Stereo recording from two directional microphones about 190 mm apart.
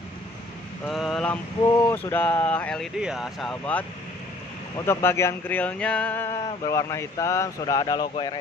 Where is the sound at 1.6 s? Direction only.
20° left (ahead or behind).